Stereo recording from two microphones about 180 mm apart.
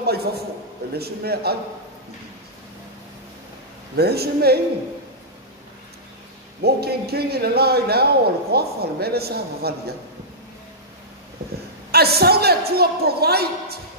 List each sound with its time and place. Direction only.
0.0 s speech: 60° right (ahead or behind)
3.9 s speech: 60° right (ahead or behind)
6.6 s speech: 60° right (ahead or behind)
11.9 s speech: 60° right (ahead or behind)